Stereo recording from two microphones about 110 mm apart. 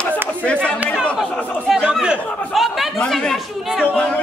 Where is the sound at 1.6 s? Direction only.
5° right (ahead or behind).